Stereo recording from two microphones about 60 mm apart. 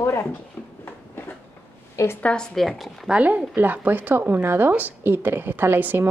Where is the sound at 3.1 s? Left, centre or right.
Right.